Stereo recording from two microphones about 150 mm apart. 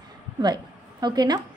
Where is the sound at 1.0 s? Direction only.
25° right (ahead or behind).